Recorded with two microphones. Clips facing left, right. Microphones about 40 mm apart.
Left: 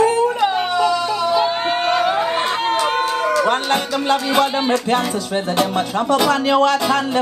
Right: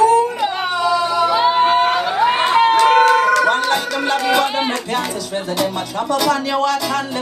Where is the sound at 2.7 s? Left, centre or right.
Right.